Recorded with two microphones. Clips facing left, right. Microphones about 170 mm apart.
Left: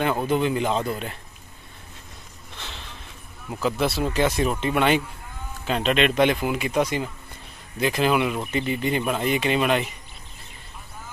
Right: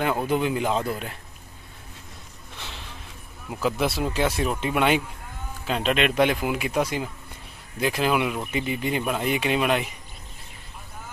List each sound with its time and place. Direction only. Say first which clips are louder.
0.0 s speech: left 1 dB; 5° right (ahead or behind)
2.5 s a sound: even; 5° right (ahead or behind)
3.6 s speech: left 1 dB; 10° right (ahead or behind)